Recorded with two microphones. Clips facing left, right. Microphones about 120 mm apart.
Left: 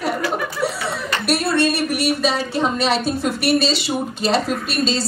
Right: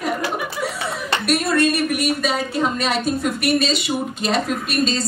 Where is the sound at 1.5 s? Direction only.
30° left (ahead or behind).